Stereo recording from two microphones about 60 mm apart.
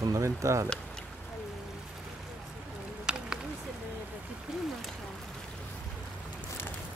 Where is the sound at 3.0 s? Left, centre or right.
Centre.